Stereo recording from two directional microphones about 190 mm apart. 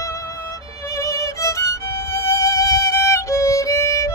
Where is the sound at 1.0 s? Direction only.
15° left (ahead or behind).